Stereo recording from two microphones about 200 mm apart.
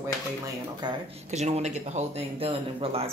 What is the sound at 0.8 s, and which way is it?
Speech, 20° right (ahead or behind).